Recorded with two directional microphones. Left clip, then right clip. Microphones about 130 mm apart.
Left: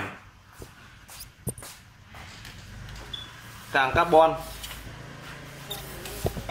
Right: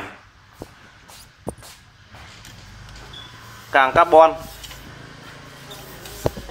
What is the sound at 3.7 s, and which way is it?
Speech, 10° right (ahead or behind).